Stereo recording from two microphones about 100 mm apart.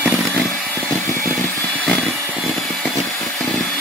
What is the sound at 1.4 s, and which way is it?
Vehicle, 15° left (ahead or behind).